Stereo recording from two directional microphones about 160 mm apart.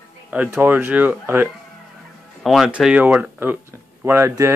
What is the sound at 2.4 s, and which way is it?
Speech, centre (ahead or behind).